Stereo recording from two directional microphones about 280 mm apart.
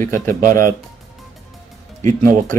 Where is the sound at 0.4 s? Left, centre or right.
Right.